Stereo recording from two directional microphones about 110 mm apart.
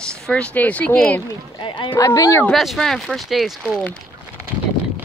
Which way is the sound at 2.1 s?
25° left (ahead or behind).